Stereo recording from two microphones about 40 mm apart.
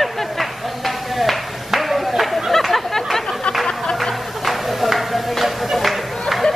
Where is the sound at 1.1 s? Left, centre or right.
Centre.